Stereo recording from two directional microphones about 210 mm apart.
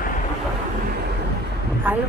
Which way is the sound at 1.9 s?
10° right (ahead or behind).